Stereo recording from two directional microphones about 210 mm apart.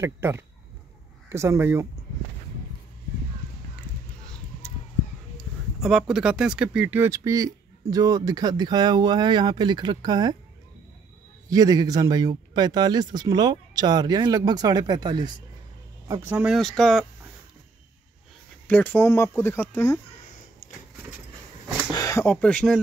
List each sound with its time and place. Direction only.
0.0 s speech: 10° right (ahead or behind)
4.3 s a sound: 5° left (ahead or behind)
5.8 s speech: centre (ahead or behind); by 10.3 s 20° right (ahead or behind)
11.4 s speech: 15° right (ahead or behind)
16.1 s speech: 10° right (ahead or behind)
18.7 s speech: 10° left (ahead or behind)
21.9 s speech: 15° left (ahead or behind)